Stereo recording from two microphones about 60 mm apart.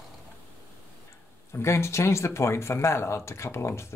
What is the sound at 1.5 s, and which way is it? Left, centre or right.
Speech, left.